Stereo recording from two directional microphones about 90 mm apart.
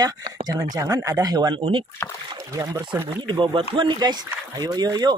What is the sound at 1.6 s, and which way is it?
Speech, 70° right (ahead or behind).